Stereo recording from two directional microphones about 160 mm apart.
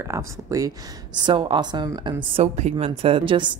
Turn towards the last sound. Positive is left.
turn(degrees=-30)  # may be behind; listen again after turning